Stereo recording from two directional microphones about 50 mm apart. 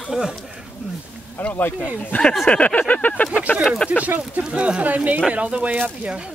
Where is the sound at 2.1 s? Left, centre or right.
Left.